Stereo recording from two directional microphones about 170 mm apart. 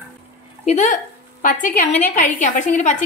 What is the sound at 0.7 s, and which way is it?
A woman's voice, 45° left (ahead or behind).